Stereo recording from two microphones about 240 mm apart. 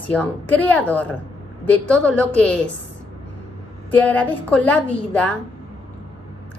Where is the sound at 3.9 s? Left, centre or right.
Centre.